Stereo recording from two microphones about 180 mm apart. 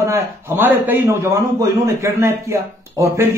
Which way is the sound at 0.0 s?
15° right (ahead or behind).